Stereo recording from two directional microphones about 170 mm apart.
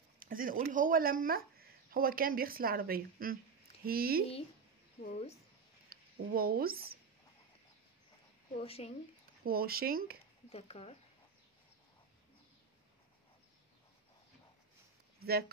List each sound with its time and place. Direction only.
0.2 s speech: 55° right (ahead or behind)
5.0 s speech: 40° left (ahead or behind)
5.9 s speech: 60° right (ahead or behind)
8.5 s speech: 35° left (ahead or behind)
9.4 s speech: 60° right (ahead or behind)
10.5 s speech: 35° left (ahead or behind)
15.1 s speech: 65° right (ahead or behind)